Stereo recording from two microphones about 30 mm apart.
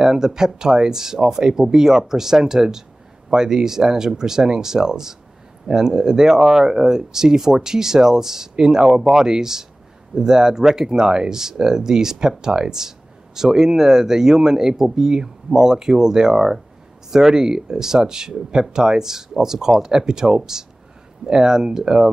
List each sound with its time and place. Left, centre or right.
0.0 s speech: centre